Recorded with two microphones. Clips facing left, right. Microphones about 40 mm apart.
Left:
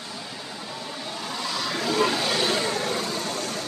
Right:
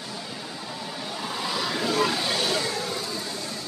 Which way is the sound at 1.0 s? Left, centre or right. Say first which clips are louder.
Right 1 dB; centre.